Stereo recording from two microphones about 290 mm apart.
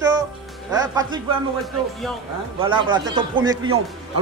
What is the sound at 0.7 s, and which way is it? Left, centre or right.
Speech, centre.